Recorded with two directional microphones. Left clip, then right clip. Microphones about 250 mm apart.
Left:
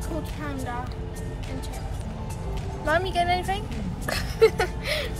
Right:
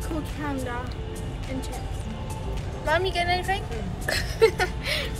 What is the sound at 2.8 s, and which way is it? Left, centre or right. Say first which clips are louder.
Speech: left 1 dB; left.